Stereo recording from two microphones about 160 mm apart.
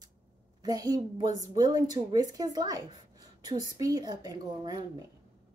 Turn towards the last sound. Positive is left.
turn(degrees=-25)  # may be behind; listen again after turning